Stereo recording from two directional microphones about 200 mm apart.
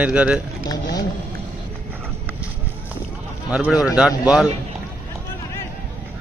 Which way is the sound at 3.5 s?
5° right (ahead or behind).